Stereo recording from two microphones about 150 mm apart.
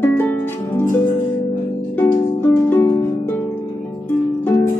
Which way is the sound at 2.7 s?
15° left (ahead or behind).